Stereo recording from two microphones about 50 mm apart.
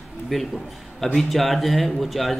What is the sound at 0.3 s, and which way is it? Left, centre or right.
A man's voice, centre.